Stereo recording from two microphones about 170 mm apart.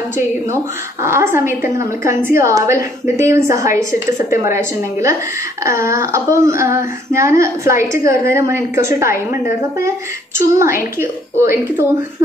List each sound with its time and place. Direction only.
1.0 s a woman's voice: 15° right (ahead or behind)